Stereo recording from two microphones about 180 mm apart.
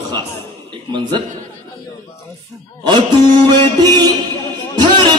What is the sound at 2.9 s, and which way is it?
Music, 25° right (ahead or behind).